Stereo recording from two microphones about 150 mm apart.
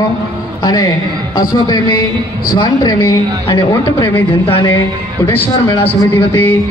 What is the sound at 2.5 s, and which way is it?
Speech, 30° left (ahead or behind).